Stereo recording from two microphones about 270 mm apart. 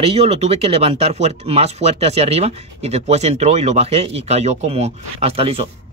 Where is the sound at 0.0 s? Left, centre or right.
Right.